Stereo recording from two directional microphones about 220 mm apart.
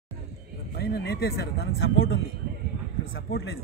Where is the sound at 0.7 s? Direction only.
45° left (ahead or behind).